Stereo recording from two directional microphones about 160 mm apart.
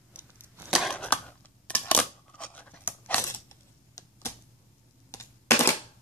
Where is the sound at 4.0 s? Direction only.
25° left (ahead or behind).